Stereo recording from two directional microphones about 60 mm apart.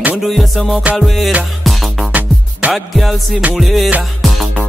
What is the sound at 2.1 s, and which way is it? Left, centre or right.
Music, right.